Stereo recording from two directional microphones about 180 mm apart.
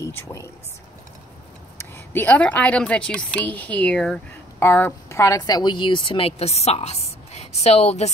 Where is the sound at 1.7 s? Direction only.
10° left (ahead or behind).